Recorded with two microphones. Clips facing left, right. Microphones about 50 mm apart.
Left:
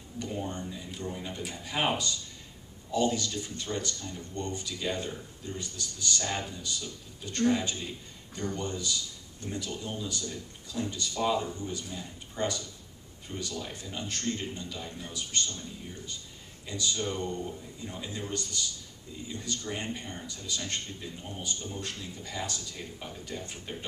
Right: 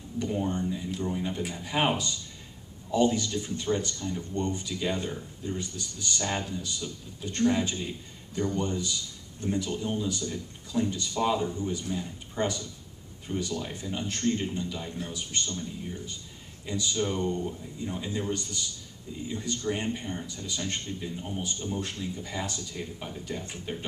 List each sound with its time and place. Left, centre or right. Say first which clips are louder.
0.2 s a man's voice: right 6 dB; centre
2.9 s a man's voice: right 3 dB; centre
16.6 s a man's voice: right 3 dB; centre